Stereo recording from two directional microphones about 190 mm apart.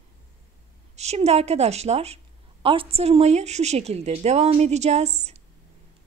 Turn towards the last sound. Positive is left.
turn(degrees=-35)  # may be behind; listen again after turning